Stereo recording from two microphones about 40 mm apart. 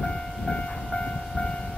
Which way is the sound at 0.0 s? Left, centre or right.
Centre.